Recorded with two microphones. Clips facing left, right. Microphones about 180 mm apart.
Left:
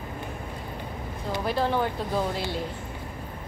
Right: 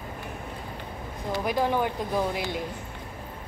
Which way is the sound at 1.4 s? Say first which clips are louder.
Even; 15° right (ahead or behind).